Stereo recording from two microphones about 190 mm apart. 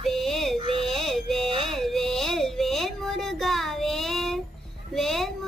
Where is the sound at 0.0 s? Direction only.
Centre (ahead or behind).